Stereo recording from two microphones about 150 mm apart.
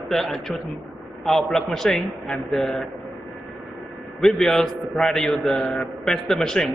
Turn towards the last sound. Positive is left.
turn(degrees=0)  # may be behind; listen again after turning